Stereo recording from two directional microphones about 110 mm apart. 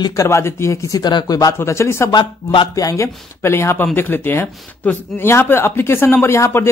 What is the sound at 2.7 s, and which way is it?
Speech, 30° left (ahead or behind).